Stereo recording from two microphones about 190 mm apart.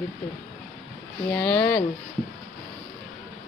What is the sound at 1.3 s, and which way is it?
Speech, 10° left (ahead or behind).